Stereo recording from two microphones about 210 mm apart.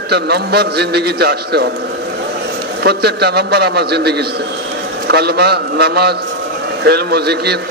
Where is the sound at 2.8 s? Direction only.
50° right (ahead or behind).